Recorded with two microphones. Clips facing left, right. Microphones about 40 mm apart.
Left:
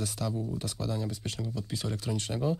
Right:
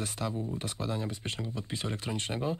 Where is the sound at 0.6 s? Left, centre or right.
Right.